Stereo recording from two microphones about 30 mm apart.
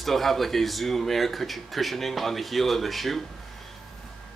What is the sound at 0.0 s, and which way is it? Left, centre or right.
Speech, centre.